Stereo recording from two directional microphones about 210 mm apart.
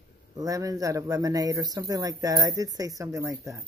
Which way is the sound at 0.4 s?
15° right (ahead or behind).